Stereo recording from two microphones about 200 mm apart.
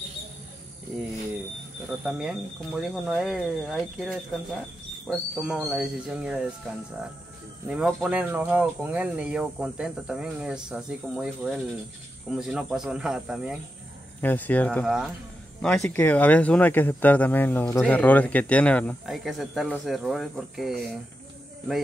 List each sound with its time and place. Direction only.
2.0 s speech: 5° right (ahead or behind)
7.6 s speech: 5° right (ahead or behind)
14.2 s speech: 10° left (ahead or behind)